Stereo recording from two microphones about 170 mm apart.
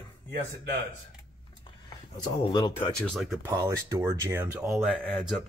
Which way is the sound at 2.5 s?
25° left (ahead or behind).